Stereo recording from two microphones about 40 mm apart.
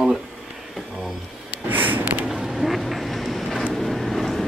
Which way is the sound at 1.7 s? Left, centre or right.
Right.